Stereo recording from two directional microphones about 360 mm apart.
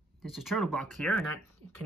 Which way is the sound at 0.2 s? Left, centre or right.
Centre.